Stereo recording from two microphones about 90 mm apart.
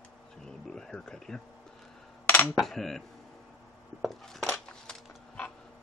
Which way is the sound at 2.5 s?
5° left (ahead or behind).